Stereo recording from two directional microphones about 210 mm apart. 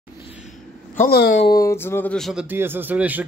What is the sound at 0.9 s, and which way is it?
Speech, 45° left (ahead or behind).